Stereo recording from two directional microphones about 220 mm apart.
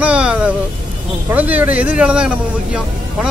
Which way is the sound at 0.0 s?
5° right (ahead or behind).